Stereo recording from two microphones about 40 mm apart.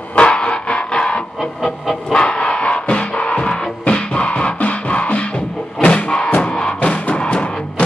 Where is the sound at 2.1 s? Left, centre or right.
Left.